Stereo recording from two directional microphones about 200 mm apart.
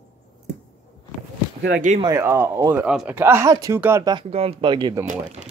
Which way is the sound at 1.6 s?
45° right (ahead or behind).